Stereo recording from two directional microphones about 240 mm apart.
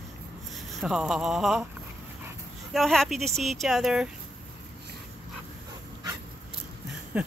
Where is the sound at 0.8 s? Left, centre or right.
Centre.